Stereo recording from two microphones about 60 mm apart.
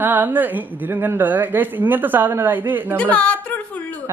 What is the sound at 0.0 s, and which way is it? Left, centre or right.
A woman's voice, right.